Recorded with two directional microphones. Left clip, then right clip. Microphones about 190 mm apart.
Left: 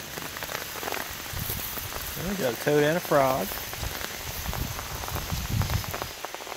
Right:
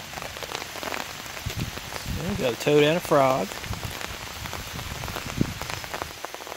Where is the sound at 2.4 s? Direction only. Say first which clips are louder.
Right 3 dB; 25° right (ahead or behind).